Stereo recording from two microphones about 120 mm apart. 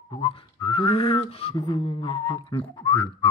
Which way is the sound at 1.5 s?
50° left (ahead or behind).